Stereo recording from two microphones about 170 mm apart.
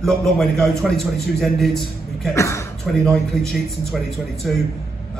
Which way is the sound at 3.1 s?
Centre (ahead or behind).